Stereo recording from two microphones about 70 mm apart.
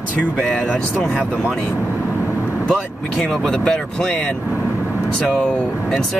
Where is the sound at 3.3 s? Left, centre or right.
Centre.